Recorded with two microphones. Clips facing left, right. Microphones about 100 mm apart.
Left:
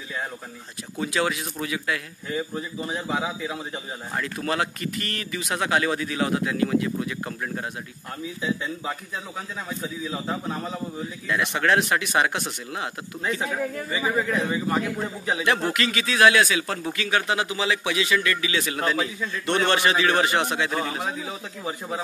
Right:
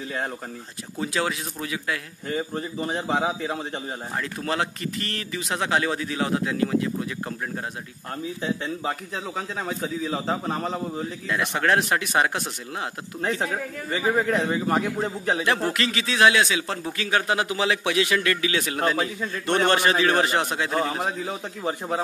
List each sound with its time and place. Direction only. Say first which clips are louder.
1.0 s speech: left 1 dB; 30° right (ahead or behind)
2.2 s a man's voice: right 2 dB; 50° right (ahead or behind)
4.2 s speech: left 1 dB; 30° right (ahead or behind)
8.8 s a man's voice: right 3 dB; 60° right (ahead or behind)
11.2 s a man's voice: left 1 dB; 35° right (ahead or behind)
13.2 s a man's voice: even; 45° right (ahead or behind)
15.3 s a man's voice: left 2 dB; 30° right (ahead or behind)
16.9 s a man's voice: right 1 dB; 35° right (ahead or behind)
17.6 s a man's voice: right 2 dB; 55° right (ahead or behind); by 21.1 s 35° right (ahead or behind)
21.6 s a man's voice: right 4 dB; 45° right (ahead or behind)